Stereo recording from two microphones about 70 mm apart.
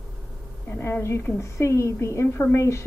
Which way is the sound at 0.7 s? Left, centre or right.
Left.